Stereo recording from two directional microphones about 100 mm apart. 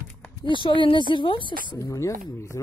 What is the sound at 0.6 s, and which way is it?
Speech, 55° left (ahead or behind).